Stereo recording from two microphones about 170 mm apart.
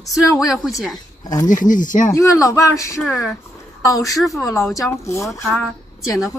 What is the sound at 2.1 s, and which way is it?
Speech, 20° left (ahead or behind).